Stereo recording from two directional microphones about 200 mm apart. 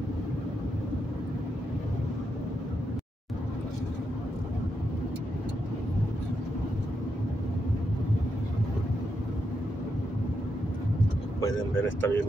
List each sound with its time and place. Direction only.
11.4 s speech: 10° left (ahead or behind)